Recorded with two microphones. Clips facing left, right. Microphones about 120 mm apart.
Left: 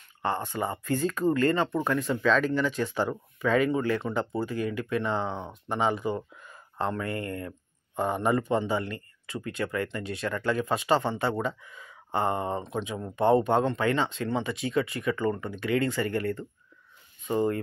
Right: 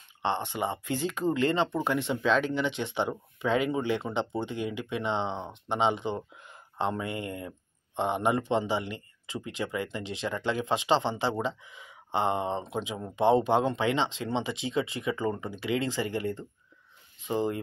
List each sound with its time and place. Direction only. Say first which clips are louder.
0.2 s speech: even; 25° right (ahead or behind)
12.7 s speech: left 1 dB; 10° right (ahead or behind)
13.3 s speech: left 1 dB; 20° right (ahead or behind)